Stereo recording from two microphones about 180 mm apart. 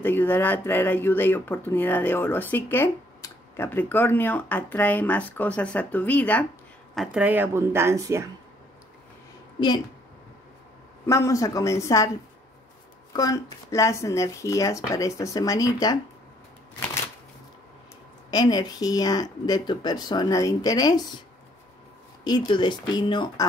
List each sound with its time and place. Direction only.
0.0 s speech: 10° left (ahead or behind)
7.0 s speech: 5° right (ahead or behind)
11.1 s speech: 15° left (ahead or behind)
13.1 s speech: 20° left (ahead or behind)
18.3 s speech: 20° left (ahead or behind)
22.2 s speech: 25° left (ahead or behind)